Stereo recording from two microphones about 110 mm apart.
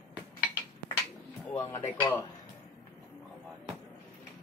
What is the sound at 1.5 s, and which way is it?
Speech, 30° left (ahead or behind).